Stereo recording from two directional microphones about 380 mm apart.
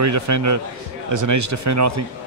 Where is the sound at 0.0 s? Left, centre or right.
Right.